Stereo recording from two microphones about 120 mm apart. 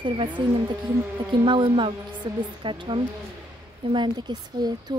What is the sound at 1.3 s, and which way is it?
Speech, 40° right (ahead or behind).